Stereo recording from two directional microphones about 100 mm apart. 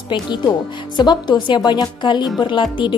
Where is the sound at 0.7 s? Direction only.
50° left (ahead or behind).